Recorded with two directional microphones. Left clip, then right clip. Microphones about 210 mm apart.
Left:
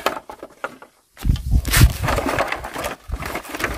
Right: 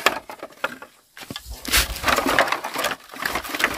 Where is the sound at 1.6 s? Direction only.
25° left (ahead or behind).